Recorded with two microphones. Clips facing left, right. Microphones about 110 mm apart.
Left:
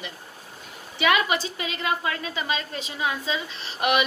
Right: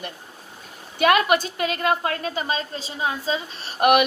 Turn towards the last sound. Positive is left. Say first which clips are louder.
# right 6 dB
turn(degrees=-50)  # may be behind; listen again after turning